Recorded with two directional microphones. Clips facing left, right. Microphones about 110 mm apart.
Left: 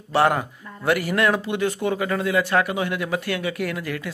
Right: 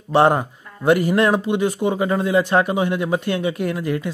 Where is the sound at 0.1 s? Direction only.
25° right (ahead or behind).